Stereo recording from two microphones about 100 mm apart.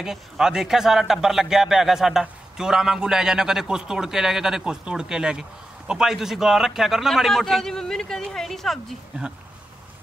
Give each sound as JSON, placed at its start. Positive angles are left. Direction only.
{"t": 0.0, "sound": "speech", "side_deg": -5}
{"t": 9.1, "sound": "speech", "side_deg": -15}